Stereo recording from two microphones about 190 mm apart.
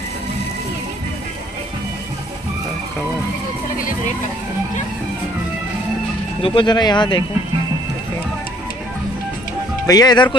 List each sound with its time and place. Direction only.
6.4 s speech: 25° left (ahead or behind)
9.8 s speech: 20° left (ahead or behind)